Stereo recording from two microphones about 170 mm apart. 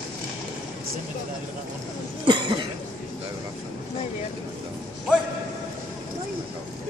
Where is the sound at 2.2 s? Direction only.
25° right (ahead or behind).